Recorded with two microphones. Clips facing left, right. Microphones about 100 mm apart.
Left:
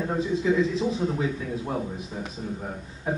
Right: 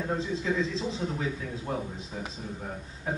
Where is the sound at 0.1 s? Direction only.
15° left (ahead or behind).